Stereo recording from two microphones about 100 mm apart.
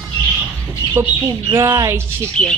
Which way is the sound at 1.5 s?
30° right (ahead or behind).